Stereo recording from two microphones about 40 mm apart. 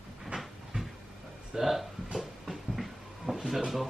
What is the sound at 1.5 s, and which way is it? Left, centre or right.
Speech, centre.